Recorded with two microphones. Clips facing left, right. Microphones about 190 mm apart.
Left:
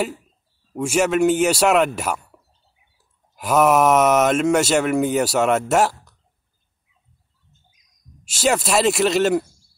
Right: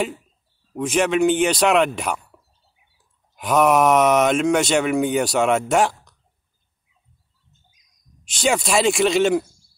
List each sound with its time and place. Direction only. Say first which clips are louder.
0.7 s speech: left 1 dB; 5° left (ahead or behind)
3.3 s speech: left 1 dB; 5° left (ahead or behind)
8.4 s speech: left 1 dB; 5° left (ahead or behind)